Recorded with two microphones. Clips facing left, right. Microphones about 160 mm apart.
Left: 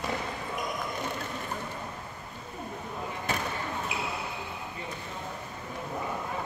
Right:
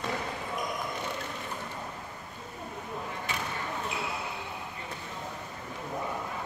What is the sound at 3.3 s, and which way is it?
Basketball bounce, 45° left (ahead or behind).